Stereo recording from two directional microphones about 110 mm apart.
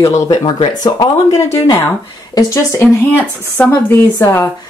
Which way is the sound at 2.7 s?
20° left (ahead or behind).